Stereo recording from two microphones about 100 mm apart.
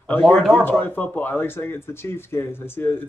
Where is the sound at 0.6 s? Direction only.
20° left (ahead or behind).